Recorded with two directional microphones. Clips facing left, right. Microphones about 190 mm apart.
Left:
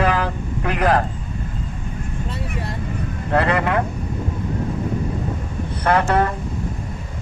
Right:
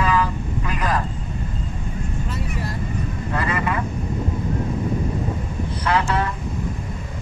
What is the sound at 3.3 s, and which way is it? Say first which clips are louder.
Speech: left 6 dB; 65° left (ahead or behind).